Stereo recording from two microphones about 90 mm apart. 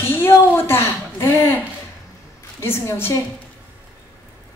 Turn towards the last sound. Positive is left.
turn(degrees=30)  # may be behind; listen again after turning